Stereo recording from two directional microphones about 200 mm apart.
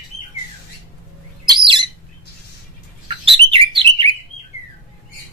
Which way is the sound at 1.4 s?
25° right (ahead or behind).